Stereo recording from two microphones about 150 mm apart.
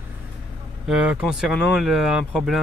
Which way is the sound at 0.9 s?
5° right (ahead or behind).